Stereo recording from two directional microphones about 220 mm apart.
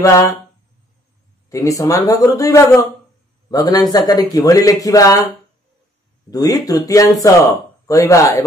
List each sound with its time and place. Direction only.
0.0 s speech: 15° left (ahead or behind)
1.5 s a man's voice: 15° left (ahead or behind)
6.3 s speech: 15° left (ahead or behind)